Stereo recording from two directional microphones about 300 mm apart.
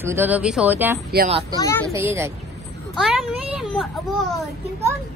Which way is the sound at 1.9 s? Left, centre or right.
Centre.